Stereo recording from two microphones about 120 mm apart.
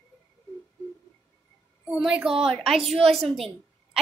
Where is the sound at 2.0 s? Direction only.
10° right (ahead or behind).